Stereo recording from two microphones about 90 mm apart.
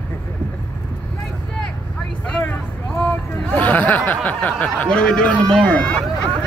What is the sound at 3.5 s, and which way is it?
A man's voice, 15° left (ahead or behind).